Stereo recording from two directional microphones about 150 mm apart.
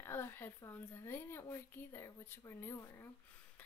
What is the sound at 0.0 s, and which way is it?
A woman's voice, 15° left (ahead or behind).